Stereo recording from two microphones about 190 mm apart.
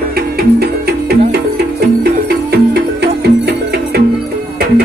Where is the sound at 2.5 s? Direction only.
60° right (ahead or behind).